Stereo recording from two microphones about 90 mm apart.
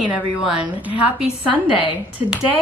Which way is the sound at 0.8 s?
15° right (ahead or behind).